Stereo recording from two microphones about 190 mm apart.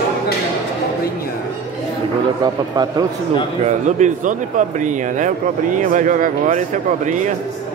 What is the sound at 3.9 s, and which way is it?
Speech, 40° right (ahead or behind).